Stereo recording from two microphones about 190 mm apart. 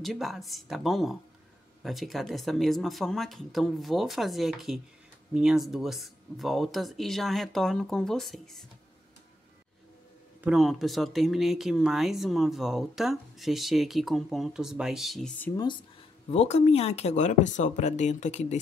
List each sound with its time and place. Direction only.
0.0 s speech: centre (ahead or behind)
10.4 s speech: centre (ahead or behind)
16.3 s speech: 35° left (ahead or behind)